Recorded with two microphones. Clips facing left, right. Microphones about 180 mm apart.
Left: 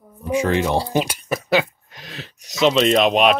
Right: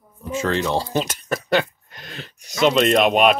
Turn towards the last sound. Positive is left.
turn(degrees=0)  # may be behind; listen again after turning